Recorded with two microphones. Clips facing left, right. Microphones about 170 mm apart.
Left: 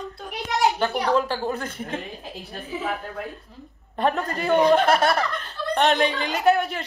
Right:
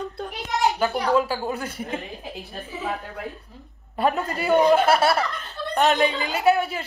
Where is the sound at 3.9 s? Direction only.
5° right (ahead or behind).